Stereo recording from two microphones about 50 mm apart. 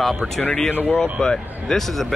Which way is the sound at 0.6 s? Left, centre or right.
Left.